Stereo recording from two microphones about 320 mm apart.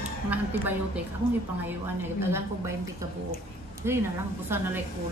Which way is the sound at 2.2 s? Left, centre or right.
Centre.